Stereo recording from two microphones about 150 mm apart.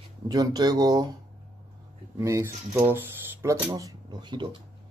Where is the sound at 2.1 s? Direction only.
20° right (ahead or behind).